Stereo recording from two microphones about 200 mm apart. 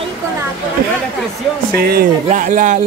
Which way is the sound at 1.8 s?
50° right (ahead or behind).